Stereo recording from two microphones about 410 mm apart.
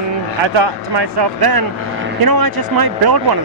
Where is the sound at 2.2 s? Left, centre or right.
Right.